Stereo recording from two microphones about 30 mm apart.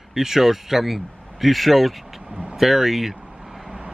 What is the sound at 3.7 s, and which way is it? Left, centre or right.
Vehicle, right.